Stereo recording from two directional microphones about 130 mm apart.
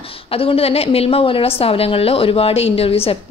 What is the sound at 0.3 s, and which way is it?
A woman's voice, 45° left (ahead or behind).